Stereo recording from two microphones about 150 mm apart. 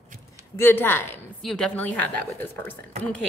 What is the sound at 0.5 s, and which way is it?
Speech, 15° left (ahead or behind).